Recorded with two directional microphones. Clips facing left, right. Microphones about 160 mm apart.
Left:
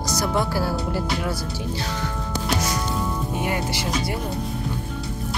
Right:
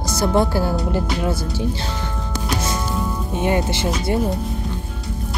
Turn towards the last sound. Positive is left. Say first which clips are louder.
# right 5 dB
turn(degrees=-25)  # may be behind; listen again after turning